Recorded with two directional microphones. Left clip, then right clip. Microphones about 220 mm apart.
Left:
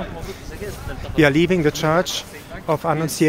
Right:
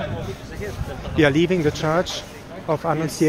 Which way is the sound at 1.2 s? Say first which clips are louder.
Left 2 dB; 25° left (ahead or behind).